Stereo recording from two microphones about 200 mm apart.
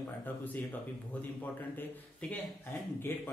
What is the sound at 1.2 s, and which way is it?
A man's voice, 10° left (ahead or behind).